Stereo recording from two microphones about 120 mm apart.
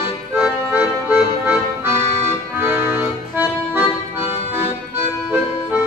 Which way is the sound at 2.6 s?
20° right (ahead or behind).